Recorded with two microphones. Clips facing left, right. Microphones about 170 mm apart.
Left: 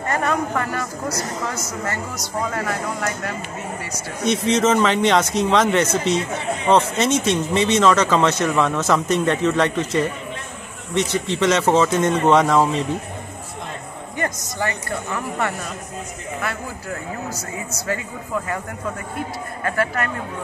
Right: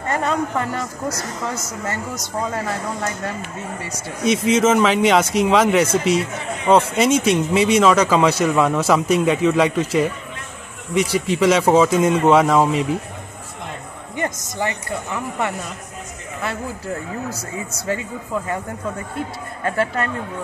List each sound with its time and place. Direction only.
0.1 s speech: 20° right (ahead or behind)
4.2 s speech: 5° right (ahead or behind)
14.1 s speech: 20° right (ahead or behind)
19.6 s speech: 25° right (ahead or behind)